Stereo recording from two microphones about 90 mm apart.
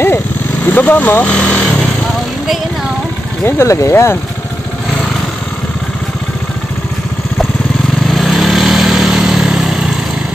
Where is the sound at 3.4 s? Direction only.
30° left (ahead or behind).